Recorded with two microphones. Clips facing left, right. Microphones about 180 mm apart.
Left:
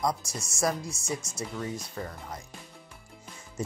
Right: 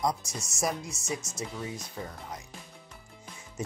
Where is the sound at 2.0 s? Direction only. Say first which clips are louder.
Left 1 dB; 10° right (ahead or behind).